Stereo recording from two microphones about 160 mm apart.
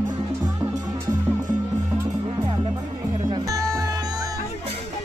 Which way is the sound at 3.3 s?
20° right (ahead or behind).